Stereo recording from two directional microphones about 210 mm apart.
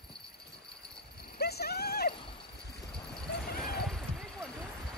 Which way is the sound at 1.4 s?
50° left (ahead or behind).